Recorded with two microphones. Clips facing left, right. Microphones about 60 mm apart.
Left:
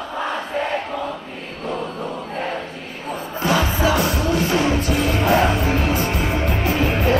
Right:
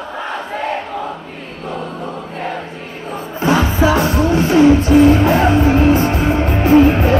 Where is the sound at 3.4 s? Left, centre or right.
Right.